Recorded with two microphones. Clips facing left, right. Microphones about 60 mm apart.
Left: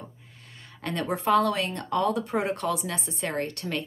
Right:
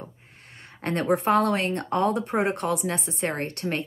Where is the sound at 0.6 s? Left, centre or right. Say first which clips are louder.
Right 4 dB; right.